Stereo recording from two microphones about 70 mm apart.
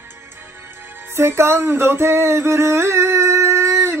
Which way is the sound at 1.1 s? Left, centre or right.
Right.